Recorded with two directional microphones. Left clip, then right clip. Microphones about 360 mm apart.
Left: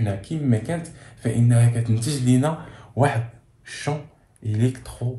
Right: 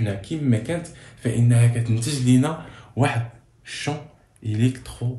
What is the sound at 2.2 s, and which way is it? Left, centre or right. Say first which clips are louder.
Speech: right 1 dB; centre.